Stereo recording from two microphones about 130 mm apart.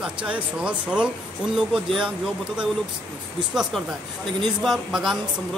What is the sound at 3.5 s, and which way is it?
A man's voice, centre (ahead or behind).